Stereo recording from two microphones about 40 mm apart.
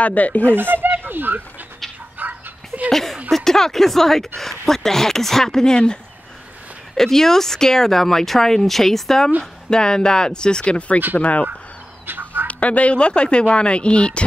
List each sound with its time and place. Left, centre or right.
0.0 s speech: left
0.5 s speech: right
2.1 s a sound: right
2.9 s speech: centre
7.0 s speech: centre
9.4 s speech: centre
11.1 s speech: left
12.1 s duck: right
12.4 s speech: left